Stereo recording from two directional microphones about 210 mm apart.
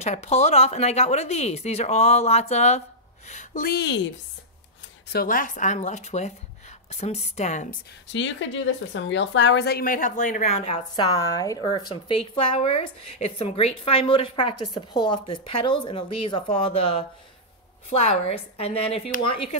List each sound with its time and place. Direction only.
0.0 s speech: 30° left (ahead or behind); by 4.1 s 55° left (ahead or behind)
5.1 s speech: 40° left (ahead or behind)
8.1 s speech: 60° left (ahead or behind); by 11.1 s 30° left (ahead or behind)
11.3 s a woman's voice: 15° left (ahead or behind)